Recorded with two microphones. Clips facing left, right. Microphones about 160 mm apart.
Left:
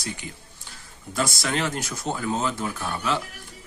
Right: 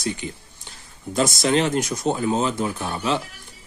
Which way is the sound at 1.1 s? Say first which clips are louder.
Right 7 dB; 20° right (ahead or behind).